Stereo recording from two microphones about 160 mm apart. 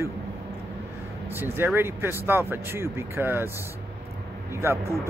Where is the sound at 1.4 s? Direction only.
15° right (ahead or behind).